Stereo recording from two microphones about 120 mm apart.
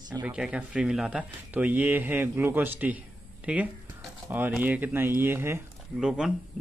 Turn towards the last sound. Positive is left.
turn(degrees=-5)  # may be behind; listen again after turning